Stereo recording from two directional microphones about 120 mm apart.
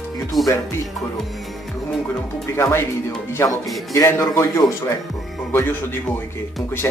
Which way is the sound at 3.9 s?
25° left (ahead or behind).